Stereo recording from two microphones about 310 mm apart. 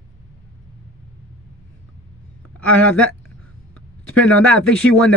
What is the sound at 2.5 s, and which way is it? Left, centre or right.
Speech, centre.